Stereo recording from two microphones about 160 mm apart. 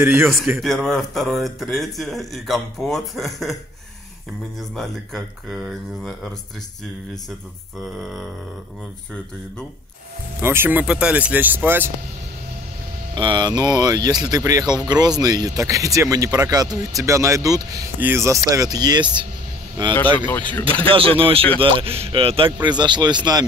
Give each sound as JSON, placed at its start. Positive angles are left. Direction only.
{"t": 0.0, "sound": "speech", "side_deg": -15}
{"t": 0.6, "sound": "a man's voice", "side_deg": 0}
{"t": 4.6, "sound": "a man's voice", "side_deg": 0}
{"t": 7.8, "sound": "a man's voice", "side_deg": 0}
{"t": 10.4, "sound": "speech", "side_deg": -15}
{"t": 13.1, "sound": "speech", "side_deg": -30}
{"t": 20.2, "sound": "speech", "side_deg": 10}
{"t": 21.2, "sound": "speech", "side_deg": -35}